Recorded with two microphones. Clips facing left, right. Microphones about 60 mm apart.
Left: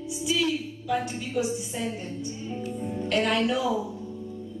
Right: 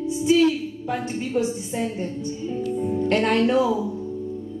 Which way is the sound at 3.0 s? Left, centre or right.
Right.